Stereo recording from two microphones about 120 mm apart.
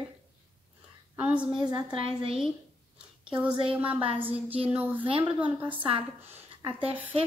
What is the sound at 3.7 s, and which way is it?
Child singing, 15° right (ahead or behind).